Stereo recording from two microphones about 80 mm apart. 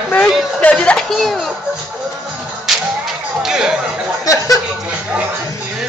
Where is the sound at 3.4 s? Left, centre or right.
Centre.